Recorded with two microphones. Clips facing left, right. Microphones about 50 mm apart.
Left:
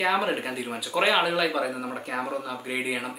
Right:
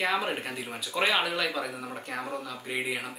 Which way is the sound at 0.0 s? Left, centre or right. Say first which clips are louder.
Left 4 dB; centre.